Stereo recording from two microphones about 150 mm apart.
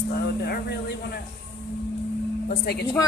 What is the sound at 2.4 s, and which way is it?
Speech, 90° left.